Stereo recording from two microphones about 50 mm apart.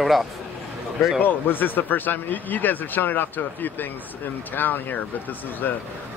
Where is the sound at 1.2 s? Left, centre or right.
Left.